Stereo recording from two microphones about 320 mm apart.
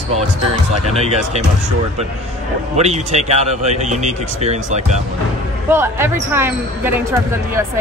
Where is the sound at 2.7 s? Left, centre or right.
Centre.